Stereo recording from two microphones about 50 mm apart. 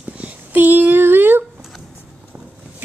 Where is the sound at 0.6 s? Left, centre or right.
Right.